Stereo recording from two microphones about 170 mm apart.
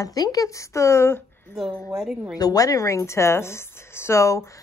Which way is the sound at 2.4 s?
20° left (ahead or behind).